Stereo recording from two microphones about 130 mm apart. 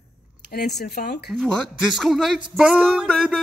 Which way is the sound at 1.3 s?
Centre (ahead or behind).